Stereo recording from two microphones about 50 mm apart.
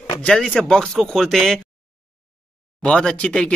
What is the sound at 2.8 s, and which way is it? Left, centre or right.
Speech, centre.